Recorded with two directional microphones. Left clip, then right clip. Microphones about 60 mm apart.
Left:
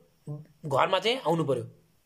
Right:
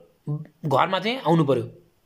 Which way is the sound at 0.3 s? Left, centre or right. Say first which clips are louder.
Right 6 dB; left.